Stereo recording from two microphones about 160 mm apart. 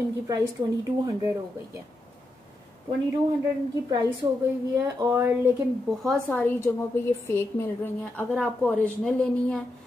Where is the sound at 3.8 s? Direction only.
15° right (ahead or behind).